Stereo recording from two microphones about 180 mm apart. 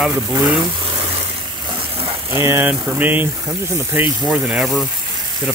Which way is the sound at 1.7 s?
30° right (ahead or behind).